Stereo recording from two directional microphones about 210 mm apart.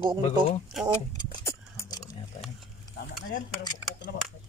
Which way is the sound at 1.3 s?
15° left (ahead or behind).